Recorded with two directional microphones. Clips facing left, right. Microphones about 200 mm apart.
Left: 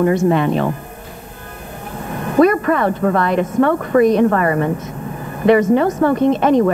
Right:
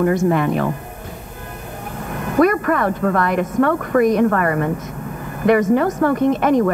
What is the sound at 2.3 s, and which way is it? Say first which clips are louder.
A woman's voice: left 3 dB; 25° left (ahead or behind).